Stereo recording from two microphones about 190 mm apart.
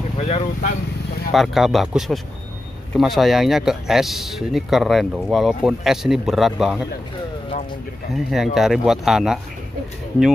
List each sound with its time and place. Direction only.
0.2 s speech: 40° left (ahead or behind)
1.3 s speech: centre (ahead or behind)
8.1 s speech: centre (ahead or behind)